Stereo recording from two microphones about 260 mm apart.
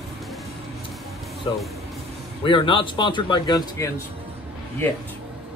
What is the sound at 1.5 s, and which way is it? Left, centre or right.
A man's voice, centre.